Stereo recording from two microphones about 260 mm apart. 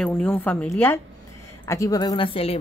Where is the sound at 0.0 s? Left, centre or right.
Centre.